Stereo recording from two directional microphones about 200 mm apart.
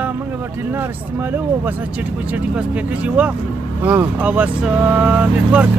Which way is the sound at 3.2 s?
5° right (ahead or behind).